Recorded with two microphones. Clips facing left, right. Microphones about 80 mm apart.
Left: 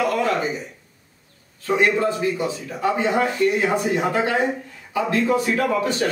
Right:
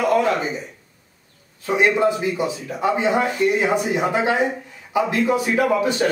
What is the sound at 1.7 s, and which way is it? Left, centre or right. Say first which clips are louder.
A man's voice: right 2 dB; centre.